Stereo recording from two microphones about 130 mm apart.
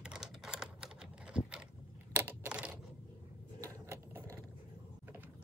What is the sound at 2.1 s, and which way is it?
Coin, 15° right (ahead or behind).